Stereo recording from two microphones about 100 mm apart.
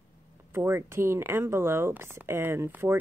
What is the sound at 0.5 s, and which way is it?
Speech, 25° right (ahead or behind).